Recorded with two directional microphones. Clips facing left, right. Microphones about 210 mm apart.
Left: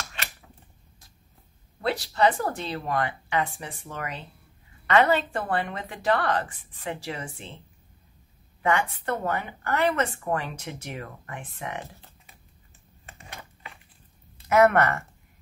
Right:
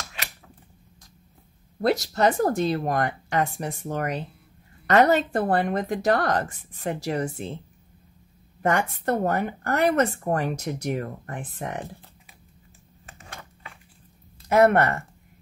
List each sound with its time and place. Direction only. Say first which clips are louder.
1.8 s speech: right 2 dB; 45° right (ahead or behind)
8.6 s speech: right 2 dB; 40° right (ahead or behind)
14.5 s speech: right 1 dB; 30° right (ahead or behind)